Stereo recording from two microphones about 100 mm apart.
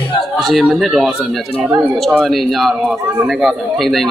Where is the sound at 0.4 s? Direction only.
Centre (ahead or behind).